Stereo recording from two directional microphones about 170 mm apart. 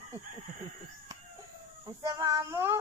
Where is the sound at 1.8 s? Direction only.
20° right (ahead or behind).